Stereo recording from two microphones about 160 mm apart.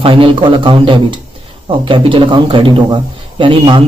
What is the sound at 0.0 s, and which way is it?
Speech, 35° right (ahead or behind).